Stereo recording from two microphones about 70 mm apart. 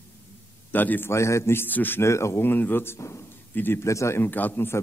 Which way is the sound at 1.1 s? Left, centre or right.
Left.